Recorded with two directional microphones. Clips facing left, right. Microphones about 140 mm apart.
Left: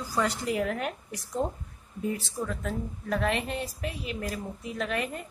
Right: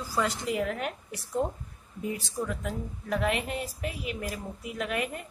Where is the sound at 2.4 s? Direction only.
10° right (ahead or behind).